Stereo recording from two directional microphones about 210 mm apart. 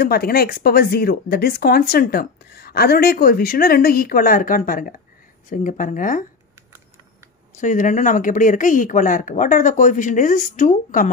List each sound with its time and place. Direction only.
0.0 s speech: 45° left (ahead or behind)
7.5 s speech: 40° left (ahead or behind)